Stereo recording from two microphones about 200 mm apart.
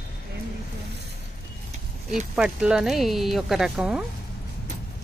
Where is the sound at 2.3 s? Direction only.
5° right (ahead or behind).